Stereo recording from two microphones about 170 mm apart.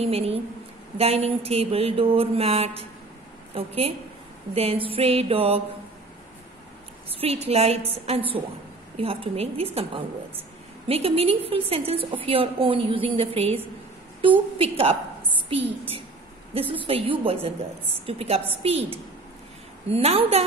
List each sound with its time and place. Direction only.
0.0 s speech: 35° right (ahead or behind)
7.1 s a woman's voice: 35° right (ahead or behind)
16.5 s speech: 30° right (ahead or behind)